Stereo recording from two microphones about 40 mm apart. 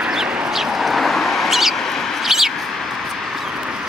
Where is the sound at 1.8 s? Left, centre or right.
Centre.